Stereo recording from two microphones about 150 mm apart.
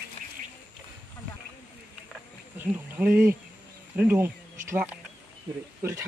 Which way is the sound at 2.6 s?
10° right (ahead or behind).